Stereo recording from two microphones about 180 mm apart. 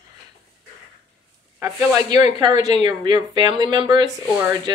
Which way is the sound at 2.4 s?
25° right (ahead or behind).